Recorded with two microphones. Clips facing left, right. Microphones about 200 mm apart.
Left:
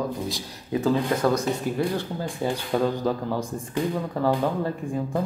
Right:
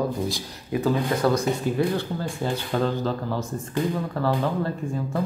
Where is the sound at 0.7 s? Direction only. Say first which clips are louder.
Left 1 dB; 25° left (ahead or behind).